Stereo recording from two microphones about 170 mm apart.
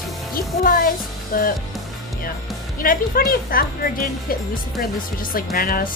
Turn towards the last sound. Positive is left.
turn(degrees=60)  # may be behind; listen again after turning